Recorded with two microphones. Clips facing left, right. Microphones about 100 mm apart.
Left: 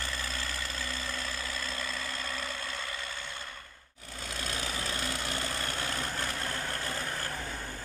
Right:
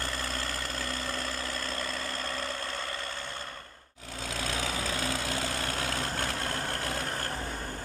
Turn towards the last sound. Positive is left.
turn(degrees=-50)  # may be behind; listen again after turning